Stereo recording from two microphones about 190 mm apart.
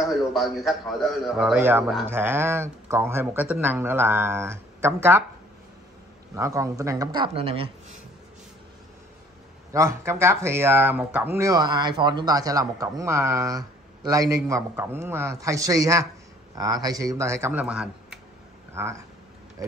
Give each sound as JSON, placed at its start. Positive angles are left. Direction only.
{"t": 0.0, "sound": "a man's voice", "side_deg": 0}
{"t": 6.3, "sound": "speech", "side_deg": -15}
{"t": 9.7, "sound": "a man's voice", "side_deg": -15}
{"t": 11.3, "sound": "a man's voice", "side_deg": -20}